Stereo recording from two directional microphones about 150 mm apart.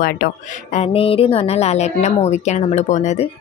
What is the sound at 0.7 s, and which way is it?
A woman's voice, 40° left (ahead or behind).